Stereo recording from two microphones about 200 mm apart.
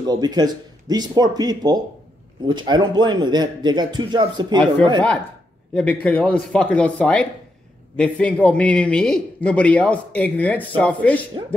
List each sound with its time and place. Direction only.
0.1 s a man's voice: 20° right (ahead or behind)
5.8 s a man's voice: 5° left (ahead or behind)